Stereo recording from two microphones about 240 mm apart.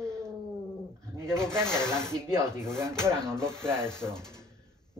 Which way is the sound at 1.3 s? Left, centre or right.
Centre.